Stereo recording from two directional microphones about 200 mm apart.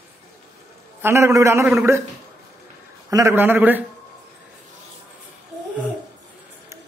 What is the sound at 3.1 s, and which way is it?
Speech, 15° right (ahead or behind).